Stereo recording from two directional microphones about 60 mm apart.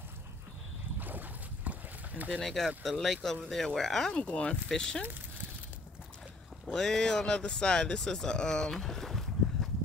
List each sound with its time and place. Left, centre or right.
0.9 s boat: right
2.4 s speech: centre
4.2 s speech: centre
6.7 s speech: centre